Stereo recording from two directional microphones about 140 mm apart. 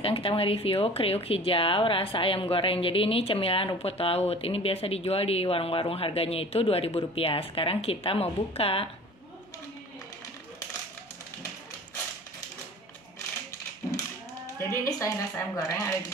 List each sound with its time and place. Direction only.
0.0 s speech: 40° left (ahead or behind)
14.4 s music: 25° left (ahead or behind)
15.5 s speech: 25° left (ahead or behind)